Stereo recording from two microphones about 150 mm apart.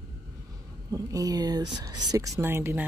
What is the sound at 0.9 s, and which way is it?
Speech, 25° right (ahead or behind).